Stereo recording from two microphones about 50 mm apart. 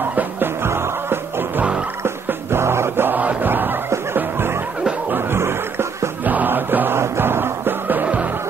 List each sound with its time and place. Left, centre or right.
0.1 s skidding: right
0.7 s music: right
3.1 s chant: right
3.9 s music: right
5.1 s a sound: right
6.2 s music: right